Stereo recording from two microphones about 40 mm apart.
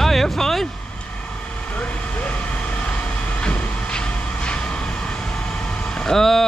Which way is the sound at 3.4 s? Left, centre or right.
Left.